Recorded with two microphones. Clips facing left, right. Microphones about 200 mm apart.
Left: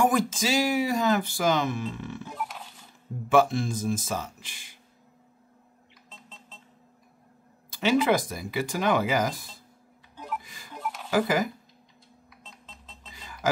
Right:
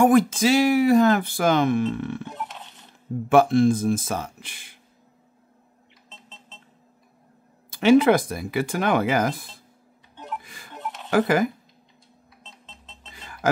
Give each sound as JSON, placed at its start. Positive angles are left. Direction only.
{"t": 0.0, "sound": "speech", "side_deg": -55}
{"t": 2.2, "sound": "a sound", "side_deg": 0}
{"t": 3.3, "sound": "speech", "side_deg": -55}
{"t": 7.7, "sound": "speech", "side_deg": -55}
{"t": 10.1, "sound": "music", "side_deg": 0}
{"t": 10.4, "sound": "music", "side_deg": -55}
{"t": 10.7, "sound": "a sound", "side_deg": 0}
{"t": 11.1, "sound": "speech", "side_deg": -55}
{"t": 13.1, "sound": "music", "side_deg": -55}